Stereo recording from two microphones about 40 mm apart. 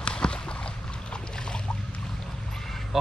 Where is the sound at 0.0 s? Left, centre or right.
Left.